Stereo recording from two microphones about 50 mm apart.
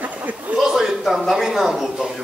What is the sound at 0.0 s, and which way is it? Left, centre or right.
Chuckle, right.